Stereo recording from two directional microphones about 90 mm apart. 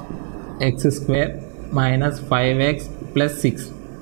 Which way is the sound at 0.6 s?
15° right (ahead or behind).